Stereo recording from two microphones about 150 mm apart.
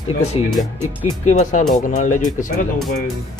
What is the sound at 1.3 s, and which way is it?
Speech, 50° left (ahead or behind).